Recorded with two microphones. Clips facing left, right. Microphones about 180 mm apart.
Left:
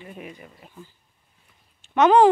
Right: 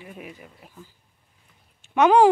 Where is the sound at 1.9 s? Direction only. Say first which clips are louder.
Left 1 dB; 10° right (ahead or behind).